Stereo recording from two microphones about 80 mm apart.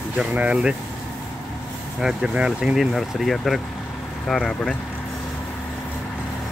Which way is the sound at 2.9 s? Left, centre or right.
Centre.